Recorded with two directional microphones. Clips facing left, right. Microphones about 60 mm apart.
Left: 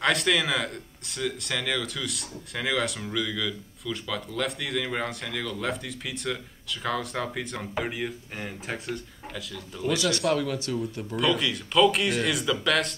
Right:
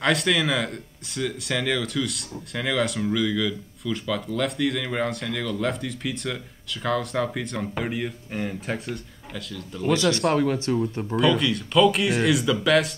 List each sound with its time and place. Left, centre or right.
0.0 s speech: centre
10.3 s speech: right
11.1 s speech: centre